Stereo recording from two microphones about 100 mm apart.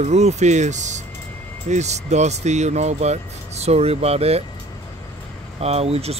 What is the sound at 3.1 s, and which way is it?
Speech, 90° right.